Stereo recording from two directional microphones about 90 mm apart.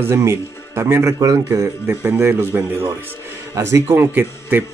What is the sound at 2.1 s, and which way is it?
Speech, 30° right (ahead or behind).